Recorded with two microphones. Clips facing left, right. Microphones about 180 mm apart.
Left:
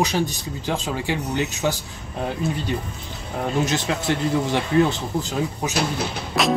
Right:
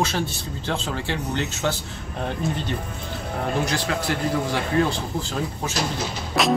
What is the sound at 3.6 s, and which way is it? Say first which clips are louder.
A man's voice: left 2 dB; 20° left (ahead or behind).